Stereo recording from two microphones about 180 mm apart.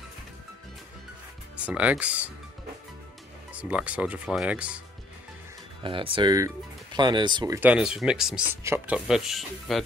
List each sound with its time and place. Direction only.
1.6 s speech: 5° right (ahead or behind)
3.5 s speech: 5° right (ahead or behind)
5.8 s speech: 30° right (ahead or behind); by 9.8 s centre (ahead or behind)